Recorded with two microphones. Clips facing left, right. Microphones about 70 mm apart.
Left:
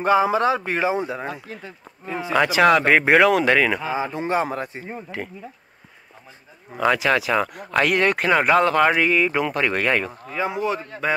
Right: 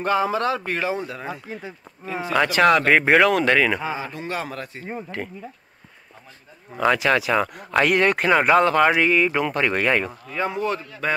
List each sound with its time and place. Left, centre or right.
0.0 s speech: centre
1.2 s speech: centre
1.5 s speech: centre
2.3 s speech: centre
3.9 s speech: left
5.2 s speech: centre
6.7 s speech: centre